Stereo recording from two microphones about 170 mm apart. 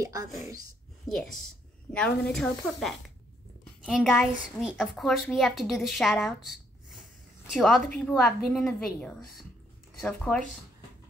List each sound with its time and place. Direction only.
0.0 s speech: 20° right (ahead or behind)
1.0 s a woman's voice: centre (ahead or behind)
10.1 s a woman's voice: 5° left (ahead or behind)